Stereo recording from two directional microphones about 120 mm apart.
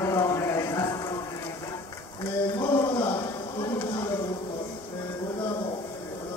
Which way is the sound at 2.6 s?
25° left (ahead or behind).